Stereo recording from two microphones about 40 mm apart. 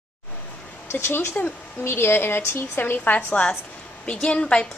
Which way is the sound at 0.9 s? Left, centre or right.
Left.